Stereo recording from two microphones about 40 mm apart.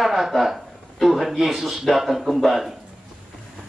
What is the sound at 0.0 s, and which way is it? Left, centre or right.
Speech, centre.